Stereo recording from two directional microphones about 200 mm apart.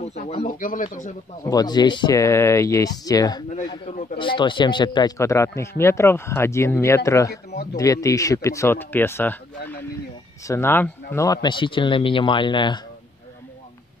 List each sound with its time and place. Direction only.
0.0 s speech: 35° left (ahead or behind)
1.4 s speech: 20° left (ahead or behind)